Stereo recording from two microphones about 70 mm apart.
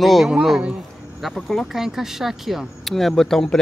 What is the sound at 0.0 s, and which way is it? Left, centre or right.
Speech, centre.